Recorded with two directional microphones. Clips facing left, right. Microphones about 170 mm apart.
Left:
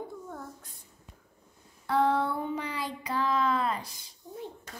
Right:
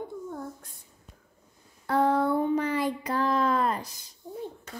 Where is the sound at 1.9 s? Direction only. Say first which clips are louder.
Right 3 dB; 40° right (ahead or behind).